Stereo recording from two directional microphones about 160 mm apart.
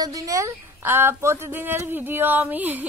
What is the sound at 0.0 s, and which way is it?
Speech, 20° right (ahead or behind).